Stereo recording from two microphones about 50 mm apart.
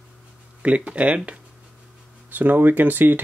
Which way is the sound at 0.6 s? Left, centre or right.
Right.